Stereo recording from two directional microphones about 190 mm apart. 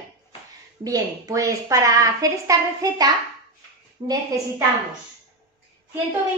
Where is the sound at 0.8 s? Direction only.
20° right (ahead or behind).